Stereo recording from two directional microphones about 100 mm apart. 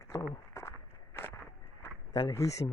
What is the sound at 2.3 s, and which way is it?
Speech, 30° left (ahead or behind).